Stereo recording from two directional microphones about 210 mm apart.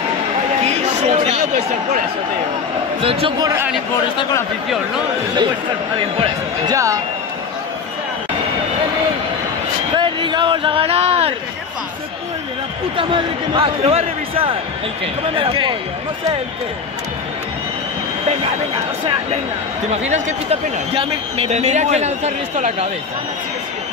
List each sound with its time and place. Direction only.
0.7 s chatter: 30° right (ahead or behind)
3.0 s speech: 25° right (ahead or behind)
4.2 s speech: 15° left (ahead or behind)
6.7 s speech: 15° right (ahead or behind)
9.9 s a sound: 20° right (ahead or behind)
12.9 s speech: 25° right (ahead or behind)
19.9 s speech: 35° right (ahead or behind)